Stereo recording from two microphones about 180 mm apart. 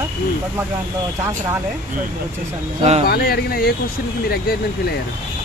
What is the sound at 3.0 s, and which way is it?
Speech, 60° left (ahead or behind).